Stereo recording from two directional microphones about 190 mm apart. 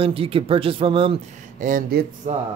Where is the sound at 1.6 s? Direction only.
45° right (ahead or behind).